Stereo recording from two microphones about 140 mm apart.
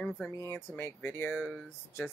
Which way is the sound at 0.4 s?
20° left (ahead or behind).